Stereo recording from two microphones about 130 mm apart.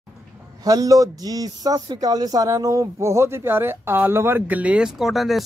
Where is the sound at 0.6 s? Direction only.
30° right (ahead or behind).